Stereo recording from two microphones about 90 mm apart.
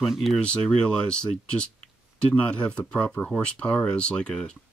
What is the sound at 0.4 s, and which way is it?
Speech, 10° left (ahead or behind).